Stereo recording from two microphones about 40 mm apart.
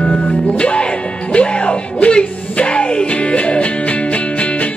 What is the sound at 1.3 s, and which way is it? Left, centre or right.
Music, left.